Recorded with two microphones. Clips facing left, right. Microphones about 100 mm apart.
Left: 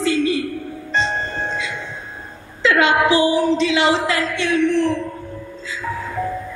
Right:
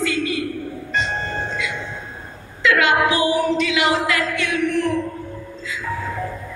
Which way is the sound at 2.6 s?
30° left (ahead or behind).